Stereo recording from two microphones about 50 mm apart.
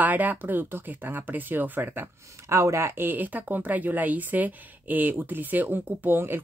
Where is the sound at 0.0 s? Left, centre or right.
Right.